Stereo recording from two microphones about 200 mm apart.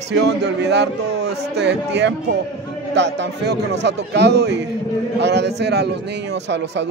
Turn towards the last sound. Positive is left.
turn(degrees=-60)  # may be behind; listen again after turning